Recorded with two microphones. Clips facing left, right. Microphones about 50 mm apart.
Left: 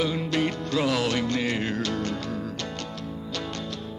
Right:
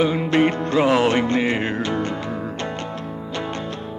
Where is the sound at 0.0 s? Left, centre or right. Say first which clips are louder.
Right 7 dB; right.